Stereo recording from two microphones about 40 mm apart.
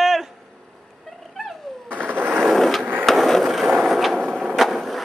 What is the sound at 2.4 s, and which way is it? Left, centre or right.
Skateboard, centre.